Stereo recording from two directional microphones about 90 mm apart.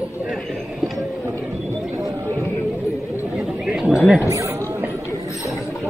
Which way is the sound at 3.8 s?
5° right (ahead or behind).